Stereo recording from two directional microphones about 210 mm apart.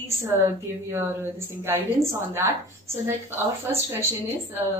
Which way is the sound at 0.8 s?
10° right (ahead or behind).